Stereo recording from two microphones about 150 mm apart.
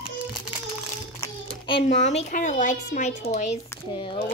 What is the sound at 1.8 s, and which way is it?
Speech, 50° left (ahead or behind).